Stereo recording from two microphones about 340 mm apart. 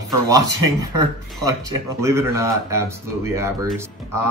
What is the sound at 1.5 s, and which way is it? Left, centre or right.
Speech, centre.